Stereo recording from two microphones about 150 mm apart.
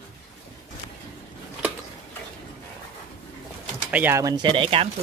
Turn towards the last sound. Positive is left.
turn(degrees=-35)  # may be behind; listen again after turning